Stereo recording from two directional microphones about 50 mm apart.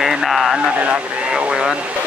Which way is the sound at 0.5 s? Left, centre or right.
Right.